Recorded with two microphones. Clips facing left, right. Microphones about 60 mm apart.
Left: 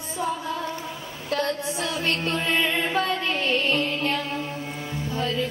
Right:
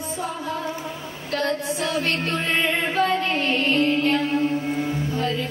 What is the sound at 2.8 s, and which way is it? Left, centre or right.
Music, right.